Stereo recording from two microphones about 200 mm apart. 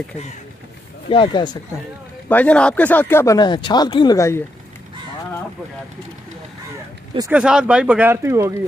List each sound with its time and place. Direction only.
1.0 s speech: 25° left (ahead or behind)
2.2 s speech: 5° left (ahead or behind)
7.2 s speech: 10° right (ahead or behind)